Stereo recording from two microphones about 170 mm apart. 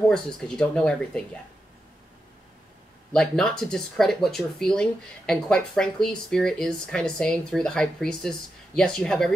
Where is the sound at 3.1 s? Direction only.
5° left (ahead or behind).